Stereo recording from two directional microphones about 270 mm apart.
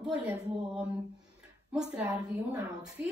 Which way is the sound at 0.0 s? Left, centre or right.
Centre.